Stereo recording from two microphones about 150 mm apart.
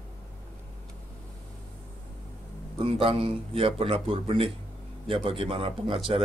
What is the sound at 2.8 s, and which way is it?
Speech, 40° right (ahead or behind).